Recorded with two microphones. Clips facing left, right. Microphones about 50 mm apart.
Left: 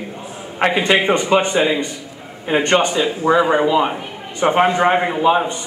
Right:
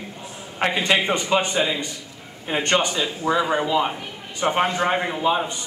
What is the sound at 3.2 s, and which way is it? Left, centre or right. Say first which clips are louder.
Speech: left 7 dB; left.